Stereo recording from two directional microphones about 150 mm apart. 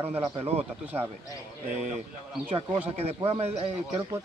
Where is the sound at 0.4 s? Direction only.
45° right (ahead or behind).